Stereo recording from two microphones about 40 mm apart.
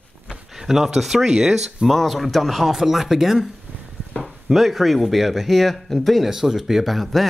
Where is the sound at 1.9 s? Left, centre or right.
Centre.